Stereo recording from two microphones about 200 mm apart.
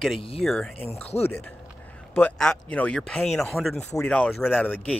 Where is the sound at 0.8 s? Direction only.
30° left (ahead or behind).